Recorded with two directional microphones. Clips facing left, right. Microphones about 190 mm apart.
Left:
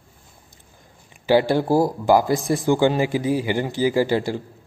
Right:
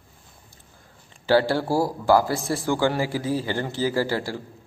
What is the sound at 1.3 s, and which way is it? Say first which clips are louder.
A man's voice: left 3 dB; 15° left (ahead or behind).